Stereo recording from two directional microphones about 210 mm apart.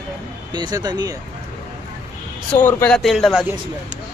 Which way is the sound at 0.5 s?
20° right (ahead or behind).